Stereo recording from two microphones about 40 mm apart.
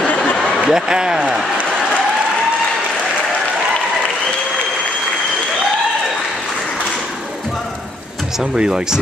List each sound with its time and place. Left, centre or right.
0.7 s a man's voice: centre
8.5 s a man's voice: centre